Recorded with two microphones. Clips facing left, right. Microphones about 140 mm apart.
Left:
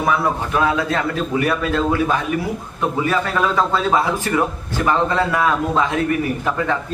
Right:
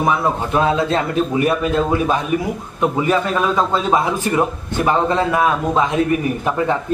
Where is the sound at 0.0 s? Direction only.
25° right (ahead or behind).